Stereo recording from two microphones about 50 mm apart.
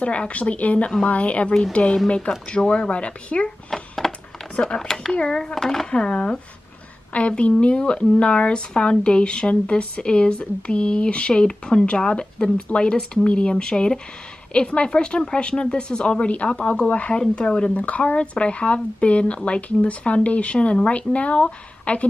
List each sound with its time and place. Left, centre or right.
0.0 s speech: left
3.7 s a sound: centre
4.6 s speech: centre
5.5 s speech: centre
5.9 s speech: centre